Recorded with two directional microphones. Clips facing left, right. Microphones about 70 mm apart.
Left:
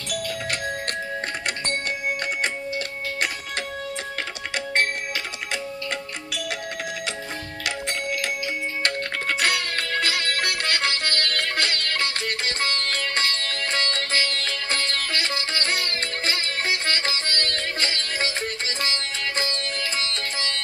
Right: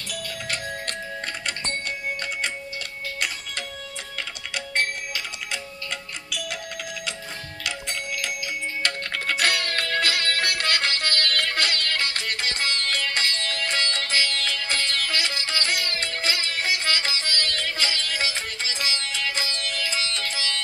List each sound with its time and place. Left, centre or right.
4.7 s music: left
8.8 s music: left